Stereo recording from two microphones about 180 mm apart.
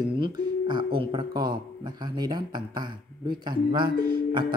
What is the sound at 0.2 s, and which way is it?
Speech, 25° right (ahead or behind).